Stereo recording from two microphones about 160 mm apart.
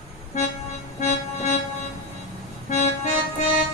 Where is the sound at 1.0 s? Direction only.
45° left (ahead or behind).